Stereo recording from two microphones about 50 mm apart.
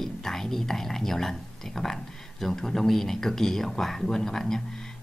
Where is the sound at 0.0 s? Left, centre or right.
Centre.